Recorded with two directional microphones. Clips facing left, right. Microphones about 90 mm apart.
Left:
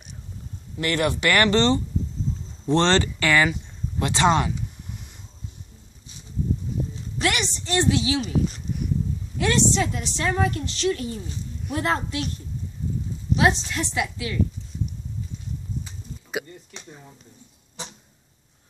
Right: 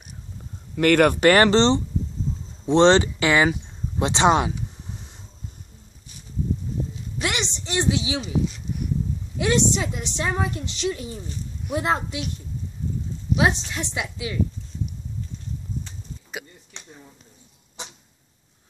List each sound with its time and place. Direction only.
0.7 s speech: 50° right (ahead or behind)
1.2 s a woman's voice: 30° right (ahead or behind)
7.2 s a sound: 20° right (ahead or behind)
9.4 s a woman's voice: 15° right (ahead or behind)
13.4 s a woman's voice: 20° right (ahead or behind)